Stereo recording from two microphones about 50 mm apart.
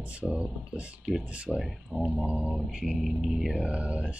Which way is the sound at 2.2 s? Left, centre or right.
Right.